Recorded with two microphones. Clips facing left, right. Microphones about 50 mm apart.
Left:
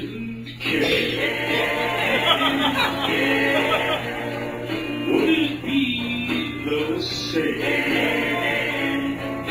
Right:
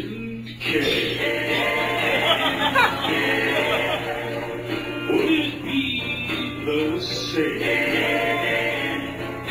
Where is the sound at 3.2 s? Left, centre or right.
Left.